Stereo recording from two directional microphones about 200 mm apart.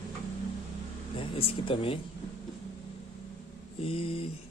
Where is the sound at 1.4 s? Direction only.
30° left (ahead or behind).